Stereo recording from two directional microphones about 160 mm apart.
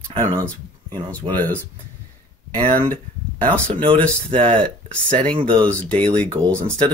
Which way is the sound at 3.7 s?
30° right (ahead or behind).